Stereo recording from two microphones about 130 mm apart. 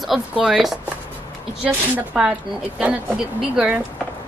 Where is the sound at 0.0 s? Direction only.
5° right (ahead or behind).